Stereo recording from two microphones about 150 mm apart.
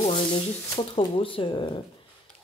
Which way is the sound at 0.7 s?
35° left (ahead or behind).